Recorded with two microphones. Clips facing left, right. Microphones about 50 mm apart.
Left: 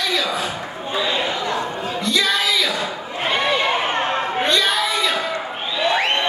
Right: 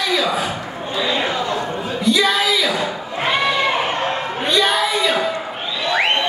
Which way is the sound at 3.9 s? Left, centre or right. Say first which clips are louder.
Left 1 dB; left.